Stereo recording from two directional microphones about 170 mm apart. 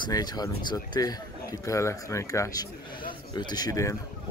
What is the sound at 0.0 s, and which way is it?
Speech, 25° left (ahead or behind).